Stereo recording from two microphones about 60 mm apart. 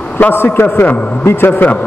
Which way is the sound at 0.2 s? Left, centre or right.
Left.